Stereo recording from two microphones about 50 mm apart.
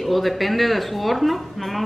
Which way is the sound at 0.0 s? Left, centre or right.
Centre.